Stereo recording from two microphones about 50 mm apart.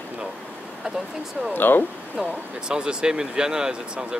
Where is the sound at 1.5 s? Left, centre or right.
Left.